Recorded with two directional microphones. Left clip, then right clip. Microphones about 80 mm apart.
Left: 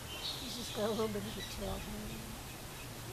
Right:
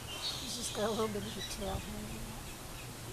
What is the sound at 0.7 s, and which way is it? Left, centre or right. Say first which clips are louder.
Speech: right 1 dB; right.